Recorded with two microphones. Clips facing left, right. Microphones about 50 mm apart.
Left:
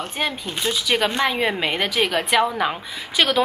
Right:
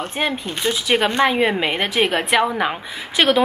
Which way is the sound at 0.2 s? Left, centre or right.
Centre.